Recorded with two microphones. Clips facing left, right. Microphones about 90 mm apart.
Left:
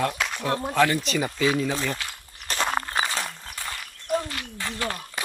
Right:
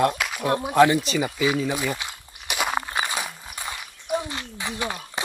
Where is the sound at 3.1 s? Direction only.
10° right (ahead or behind).